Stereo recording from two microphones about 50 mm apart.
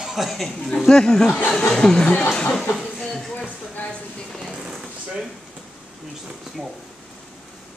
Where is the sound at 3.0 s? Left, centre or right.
Centre.